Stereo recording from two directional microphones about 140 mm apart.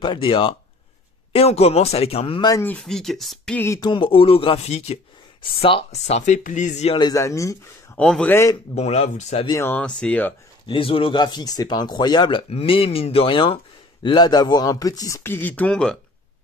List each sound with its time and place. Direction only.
0.0 s speech: 35° left (ahead or behind)
2.6 s speech: 5° left (ahead or behind)
3.5 s speech: 20° left (ahead or behind)
3.8 s speech: 35° left (ahead or behind); by 7.0 s 55° left (ahead or behind)
7.0 s speech: 25° left (ahead or behind)
8.0 s speech: 10° left (ahead or behind)
8.7 s speech: 50° left (ahead or behind)
9.5 s speech: 15° left (ahead or behind)
10.7 s speech: 40° left (ahead or behind); by 16.0 s 5° left (ahead or behind)